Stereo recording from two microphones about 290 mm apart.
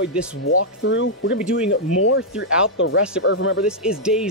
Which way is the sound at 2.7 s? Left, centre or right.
Left.